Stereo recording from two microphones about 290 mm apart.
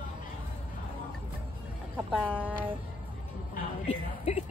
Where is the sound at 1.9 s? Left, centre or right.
Centre.